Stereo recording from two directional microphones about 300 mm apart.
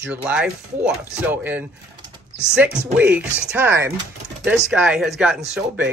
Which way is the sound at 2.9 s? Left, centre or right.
Centre.